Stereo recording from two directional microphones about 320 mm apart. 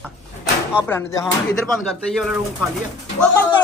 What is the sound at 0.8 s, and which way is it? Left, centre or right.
A man's voice, centre.